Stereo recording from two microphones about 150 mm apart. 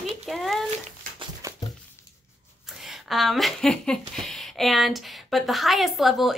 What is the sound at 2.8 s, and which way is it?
Speech, centre (ahead or behind).